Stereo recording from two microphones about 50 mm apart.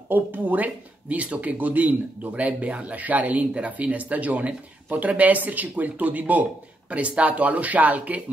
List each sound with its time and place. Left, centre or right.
0.1 s speech: right